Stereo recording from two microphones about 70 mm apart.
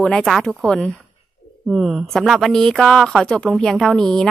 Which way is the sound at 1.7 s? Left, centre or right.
Centre.